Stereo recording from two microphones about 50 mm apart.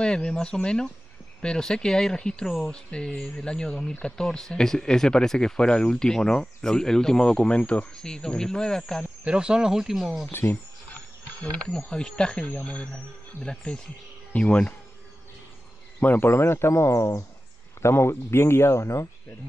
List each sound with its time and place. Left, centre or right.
0.0 s speech: centre
9.2 s speech: centre
10.3 s speech: left
11.5 s speech: centre
16.0 s speech: left
16.3 s speech: left
17.8 s speech: left